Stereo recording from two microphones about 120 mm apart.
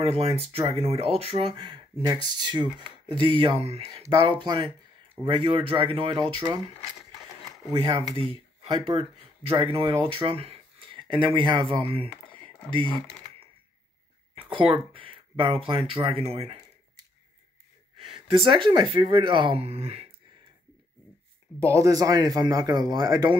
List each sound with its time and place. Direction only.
0.0 s speech: 55° right (ahead or behind)
1.5 s speech: 40° right (ahead or behind)
7.7 s speech: 45° right (ahead or behind)
12.3 s a sound: 45° right (ahead or behind)
14.3 s speech: 45° right (ahead or behind)
18.3 s speech: 45° right (ahead or behind)
21.5 s speech: 25° right (ahead or behind)